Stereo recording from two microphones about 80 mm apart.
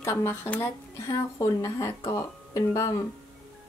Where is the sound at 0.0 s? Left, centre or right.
Left.